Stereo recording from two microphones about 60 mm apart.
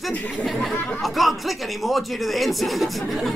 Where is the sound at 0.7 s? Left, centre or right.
Left.